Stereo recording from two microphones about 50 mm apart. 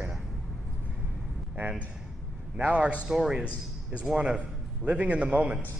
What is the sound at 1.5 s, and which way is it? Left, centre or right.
A man's voice, right.